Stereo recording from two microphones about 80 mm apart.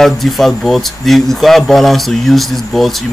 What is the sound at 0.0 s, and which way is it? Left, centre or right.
Speech, centre.